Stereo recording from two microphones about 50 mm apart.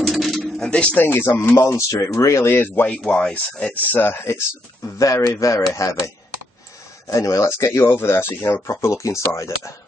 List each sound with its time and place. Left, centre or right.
0.0 s a sound: centre
0.6 s speech: left
0.9 s speech: left
2.4 s speech: left
2.9 s speech: left
4.9 s speech: left
8.6 s speech: left